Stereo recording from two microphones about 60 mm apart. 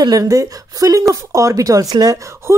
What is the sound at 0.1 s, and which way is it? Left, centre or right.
A woman's voice, right.